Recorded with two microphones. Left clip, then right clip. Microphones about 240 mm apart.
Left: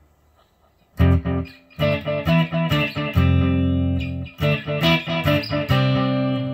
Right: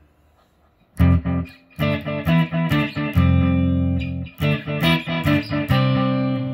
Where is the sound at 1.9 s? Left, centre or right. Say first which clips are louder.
Left 2 dB; left.